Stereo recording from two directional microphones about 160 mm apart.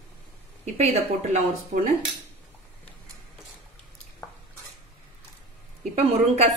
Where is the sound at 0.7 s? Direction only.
45° right (ahead or behind).